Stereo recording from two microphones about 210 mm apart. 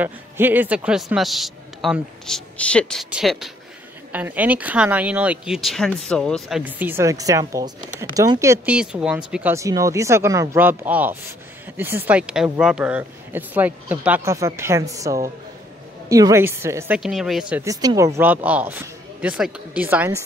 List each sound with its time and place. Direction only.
0.0 s a man's voice: 10° right (ahead or behind)
6.6 s speech: 10° right (ahead or behind)
17.6 s speech: 15° right (ahead or behind)